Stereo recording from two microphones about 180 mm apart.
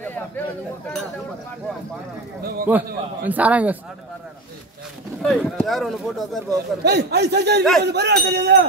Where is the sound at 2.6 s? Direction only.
10° right (ahead or behind).